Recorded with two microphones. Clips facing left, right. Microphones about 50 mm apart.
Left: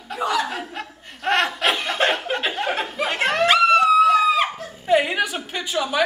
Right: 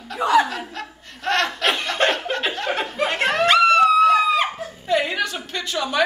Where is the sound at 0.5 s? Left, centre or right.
Centre.